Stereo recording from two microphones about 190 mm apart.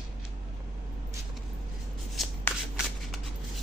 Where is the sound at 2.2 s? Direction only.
Centre (ahead or behind).